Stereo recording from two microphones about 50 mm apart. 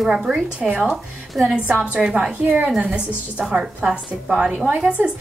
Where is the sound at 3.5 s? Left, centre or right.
Centre.